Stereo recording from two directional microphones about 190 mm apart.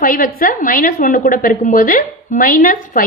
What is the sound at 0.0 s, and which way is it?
A woman's voice, 45° left (ahead or behind).